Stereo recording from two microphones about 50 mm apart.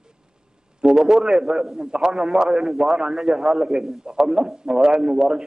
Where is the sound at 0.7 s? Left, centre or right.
Centre.